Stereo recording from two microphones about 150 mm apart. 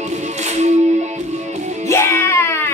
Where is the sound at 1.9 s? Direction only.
15° left (ahead or behind).